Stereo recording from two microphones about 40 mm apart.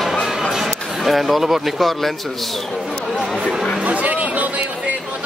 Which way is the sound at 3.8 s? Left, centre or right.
Right.